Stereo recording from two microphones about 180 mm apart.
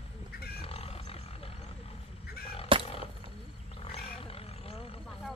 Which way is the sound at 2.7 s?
30° right (ahead or behind).